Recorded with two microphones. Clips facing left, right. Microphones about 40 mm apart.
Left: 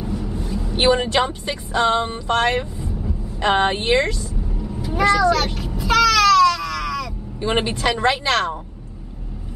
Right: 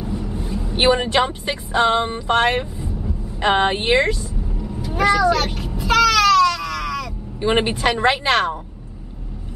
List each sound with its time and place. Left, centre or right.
0.0 s speech: centre
4.6 s cat: centre
5.0 s a sound: centre
7.3 s speech: centre